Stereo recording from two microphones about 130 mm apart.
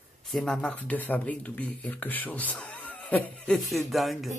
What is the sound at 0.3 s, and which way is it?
Speech, 5° left (ahead or behind).